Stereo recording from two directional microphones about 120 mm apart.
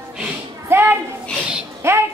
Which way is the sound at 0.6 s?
20° right (ahead or behind).